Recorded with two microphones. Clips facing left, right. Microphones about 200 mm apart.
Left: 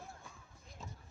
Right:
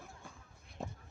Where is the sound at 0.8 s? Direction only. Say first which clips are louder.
Right 8 dB; 60° right (ahead or behind).